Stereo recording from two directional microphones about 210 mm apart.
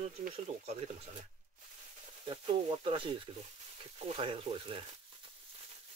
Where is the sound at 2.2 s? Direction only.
25° right (ahead or behind).